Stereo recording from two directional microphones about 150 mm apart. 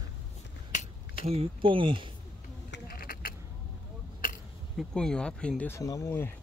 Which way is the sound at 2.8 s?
80° left.